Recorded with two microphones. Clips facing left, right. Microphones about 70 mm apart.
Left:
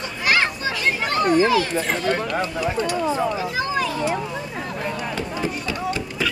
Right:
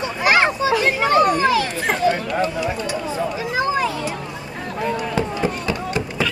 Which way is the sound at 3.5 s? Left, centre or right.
Right.